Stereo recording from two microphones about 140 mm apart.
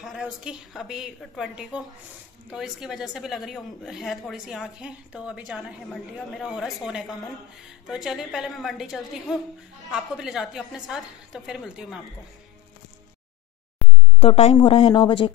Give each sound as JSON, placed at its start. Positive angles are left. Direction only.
{"t": 0.0, "sound": "speech", "side_deg": -5}
{"t": 13.8, "sound": "a sound", "side_deg": 10}
{"t": 14.2, "sound": "a woman's voice", "side_deg": 50}